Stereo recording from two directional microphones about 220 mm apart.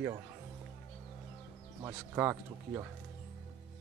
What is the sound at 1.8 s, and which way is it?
Speech, 10° right (ahead or behind).